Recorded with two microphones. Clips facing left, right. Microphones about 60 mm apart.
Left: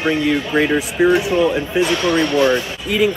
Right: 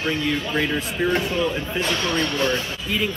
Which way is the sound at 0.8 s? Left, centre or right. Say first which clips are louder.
Left 7 dB; centre.